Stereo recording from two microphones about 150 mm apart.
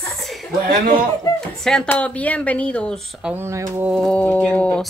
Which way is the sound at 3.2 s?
15° right (ahead or behind).